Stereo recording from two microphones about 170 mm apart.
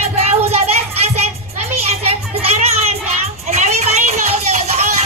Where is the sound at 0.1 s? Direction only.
40° right (ahead or behind).